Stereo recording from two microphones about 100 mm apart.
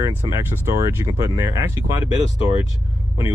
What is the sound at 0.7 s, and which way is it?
Speech, 30° right (ahead or behind).